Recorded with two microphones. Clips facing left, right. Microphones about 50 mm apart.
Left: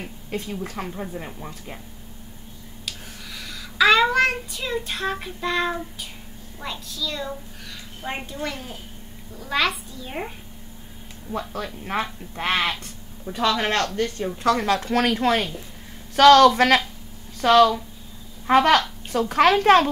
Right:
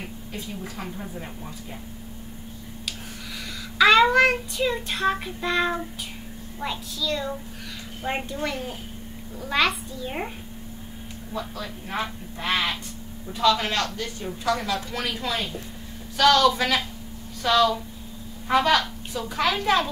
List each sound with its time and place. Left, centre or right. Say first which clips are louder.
0.3 s a woman's voice: left 7 dB; left
2.8 s child singing: even; centre
6.6 s a child's voice: right 2 dB; centre
11.3 s a woman's voice: left 3 dB; left